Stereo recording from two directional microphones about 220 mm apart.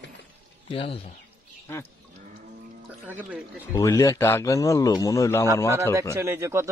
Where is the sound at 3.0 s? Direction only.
5° right (ahead or behind).